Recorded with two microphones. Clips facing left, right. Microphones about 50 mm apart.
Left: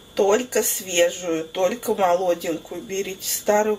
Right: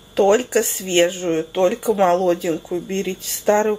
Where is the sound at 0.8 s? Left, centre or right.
Right.